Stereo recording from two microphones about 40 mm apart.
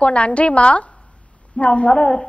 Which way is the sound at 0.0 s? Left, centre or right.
Left.